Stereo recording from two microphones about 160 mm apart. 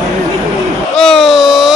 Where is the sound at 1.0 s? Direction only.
5° left (ahead or behind).